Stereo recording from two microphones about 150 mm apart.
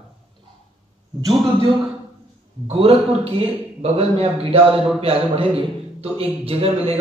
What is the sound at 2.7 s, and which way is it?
A man's voice, 40° right (ahead or behind).